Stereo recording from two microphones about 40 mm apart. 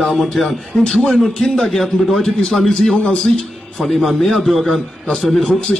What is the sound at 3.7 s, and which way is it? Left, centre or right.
A man's voice, centre.